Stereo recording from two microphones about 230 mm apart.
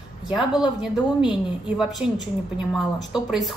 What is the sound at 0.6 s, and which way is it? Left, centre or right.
A woman's voice, centre.